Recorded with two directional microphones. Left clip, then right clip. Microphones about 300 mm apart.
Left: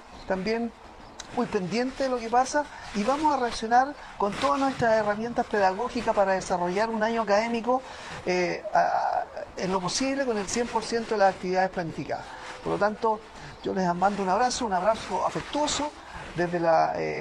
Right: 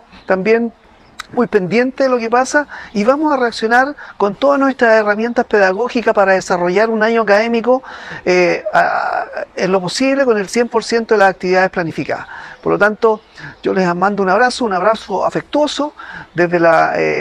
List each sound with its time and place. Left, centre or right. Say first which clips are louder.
0.3 s speech: right 15 dB; right